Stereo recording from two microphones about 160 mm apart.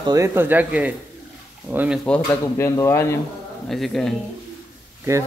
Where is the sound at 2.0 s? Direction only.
10° left (ahead or behind).